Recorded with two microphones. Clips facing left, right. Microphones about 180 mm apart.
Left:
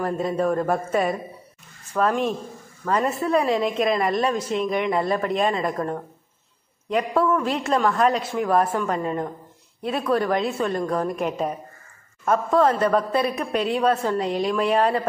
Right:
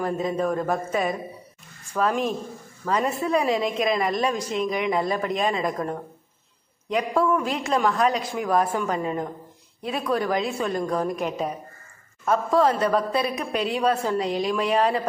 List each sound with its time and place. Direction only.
0.2 s a woman's voice: 5° left (ahead or behind)